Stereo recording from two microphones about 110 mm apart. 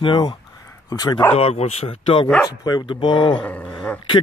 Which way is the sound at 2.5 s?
40° left (ahead or behind).